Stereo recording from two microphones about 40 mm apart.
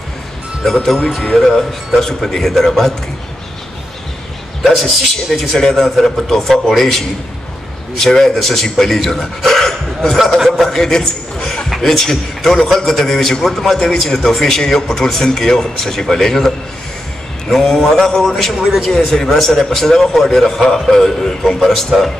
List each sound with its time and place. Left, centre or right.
0.7 s a man's voice: centre
4.6 s a man's voice: centre